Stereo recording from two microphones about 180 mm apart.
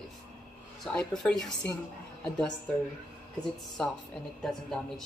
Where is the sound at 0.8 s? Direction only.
5° left (ahead or behind).